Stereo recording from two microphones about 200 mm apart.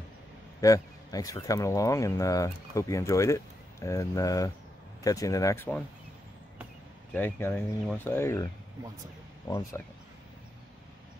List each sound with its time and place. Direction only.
0.6 s speech: 15° left (ahead or behind)
7.1 s speech: 10° left (ahead or behind)
9.5 s speech: 15° left (ahead or behind)